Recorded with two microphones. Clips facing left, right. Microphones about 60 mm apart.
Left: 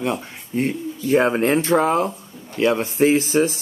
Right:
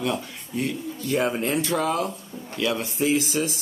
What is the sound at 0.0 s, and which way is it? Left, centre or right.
Speech, left.